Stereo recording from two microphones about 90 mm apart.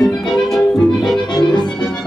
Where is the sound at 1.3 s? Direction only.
55° left (ahead or behind).